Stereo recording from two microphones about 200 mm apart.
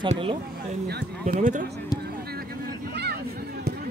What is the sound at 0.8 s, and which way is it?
Speech, 50° right (ahead or behind).